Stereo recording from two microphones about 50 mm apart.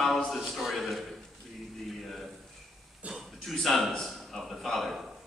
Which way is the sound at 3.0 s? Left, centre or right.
Right.